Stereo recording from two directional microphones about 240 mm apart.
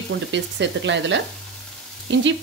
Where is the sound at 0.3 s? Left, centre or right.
Right.